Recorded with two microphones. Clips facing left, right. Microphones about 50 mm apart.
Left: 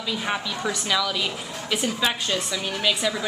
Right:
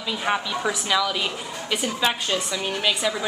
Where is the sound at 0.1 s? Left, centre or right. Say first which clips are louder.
Right 3 dB; centre.